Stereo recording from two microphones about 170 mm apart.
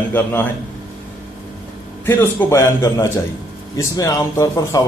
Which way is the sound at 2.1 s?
10° left (ahead or behind).